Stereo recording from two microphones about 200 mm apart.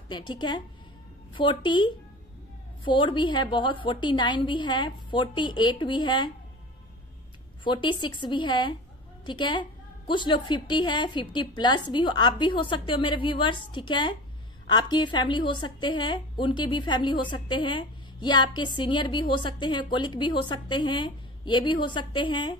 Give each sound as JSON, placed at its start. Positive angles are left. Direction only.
{"t": 0.1, "sound": "a woman's voice", "side_deg": 20}
{"t": 7.6, "sound": "a woman's voice", "side_deg": 25}